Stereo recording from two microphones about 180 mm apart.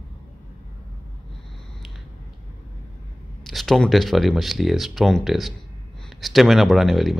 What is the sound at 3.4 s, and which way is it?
Speech, centre (ahead or behind).